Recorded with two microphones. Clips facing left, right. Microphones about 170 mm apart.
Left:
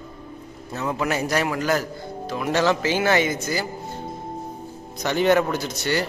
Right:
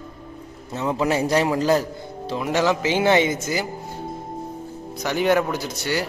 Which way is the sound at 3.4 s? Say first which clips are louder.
Right 1 dB; 15° right (ahead or behind).